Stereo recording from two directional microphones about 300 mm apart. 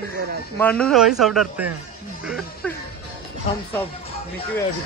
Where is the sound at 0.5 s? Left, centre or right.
Centre.